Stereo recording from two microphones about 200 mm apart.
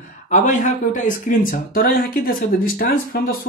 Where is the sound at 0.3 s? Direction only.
40° left (ahead or behind).